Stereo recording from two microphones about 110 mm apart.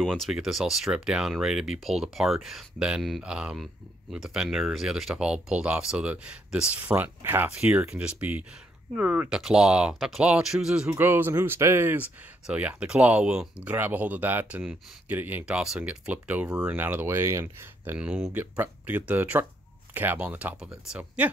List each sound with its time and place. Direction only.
0.0 s speech: centre (ahead or behind)
10.9 s speech: 20° right (ahead or behind)
17.9 s speech: 10° right (ahead or behind)